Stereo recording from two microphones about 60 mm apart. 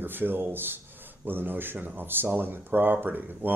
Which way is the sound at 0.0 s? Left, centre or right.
Right.